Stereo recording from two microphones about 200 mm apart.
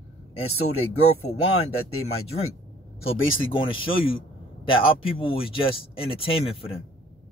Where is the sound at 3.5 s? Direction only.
25° left (ahead or behind).